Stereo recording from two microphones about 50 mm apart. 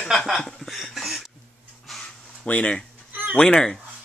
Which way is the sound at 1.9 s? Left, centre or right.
Centre.